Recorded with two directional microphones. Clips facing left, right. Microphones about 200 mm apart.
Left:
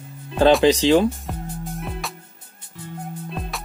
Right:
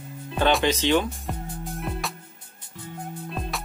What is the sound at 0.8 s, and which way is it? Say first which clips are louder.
Speech: left 6 dB; 35° left (ahead or behind).